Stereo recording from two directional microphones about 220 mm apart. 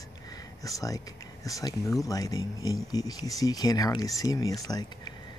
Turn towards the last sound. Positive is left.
turn(degrees=15)  # may be behind; listen again after turning